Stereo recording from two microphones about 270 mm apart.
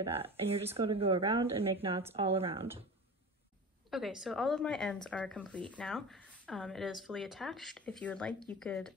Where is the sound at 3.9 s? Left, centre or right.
Centre.